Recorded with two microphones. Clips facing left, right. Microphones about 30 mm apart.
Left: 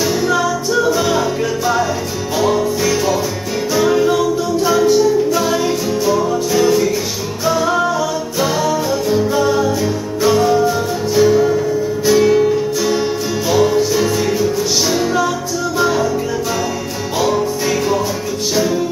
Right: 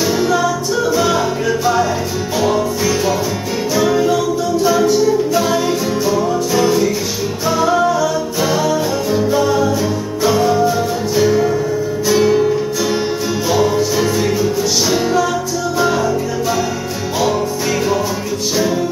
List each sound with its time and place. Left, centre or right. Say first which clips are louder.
0.8 s music: right 3 dB; centre
2.4 s music: left 1 dB; centre
17.2 s music: left 1 dB; centre